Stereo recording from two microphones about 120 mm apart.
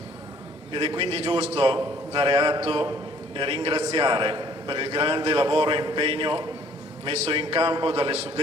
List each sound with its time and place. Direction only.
0.7 s a man's voice: 50° right (ahead or behind)